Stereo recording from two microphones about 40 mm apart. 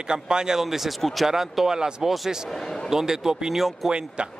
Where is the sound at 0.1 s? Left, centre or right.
Centre.